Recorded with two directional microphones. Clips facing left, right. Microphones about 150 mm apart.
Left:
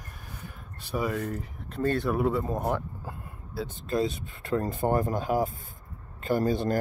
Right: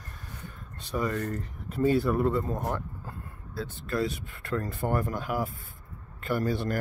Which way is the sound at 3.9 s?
20° left (ahead or behind).